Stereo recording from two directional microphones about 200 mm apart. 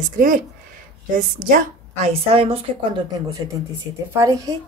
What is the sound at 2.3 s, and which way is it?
Speech, 30° right (ahead or behind).